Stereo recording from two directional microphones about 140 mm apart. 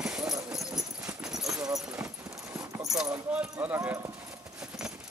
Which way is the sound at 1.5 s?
25° right (ahead or behind).